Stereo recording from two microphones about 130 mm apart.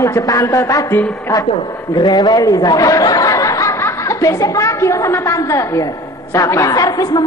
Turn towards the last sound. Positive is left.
turn(degrees=30)  # may be behind; listen again after turning